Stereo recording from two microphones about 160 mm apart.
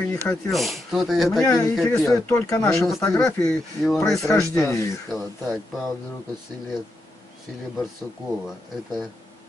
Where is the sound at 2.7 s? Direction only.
Centre (ahead or behind).